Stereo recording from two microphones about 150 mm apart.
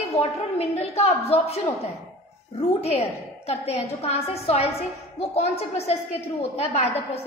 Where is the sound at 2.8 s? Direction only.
45° left (ahead or behind).